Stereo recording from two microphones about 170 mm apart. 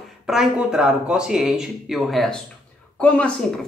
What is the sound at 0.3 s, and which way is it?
A man's voice, 5° right (ahead or behind).